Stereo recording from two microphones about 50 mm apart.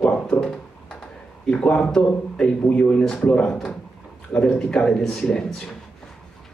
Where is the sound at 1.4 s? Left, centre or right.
Left.